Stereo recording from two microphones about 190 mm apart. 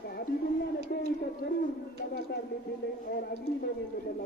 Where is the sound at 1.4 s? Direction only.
60° left (ahead or behind).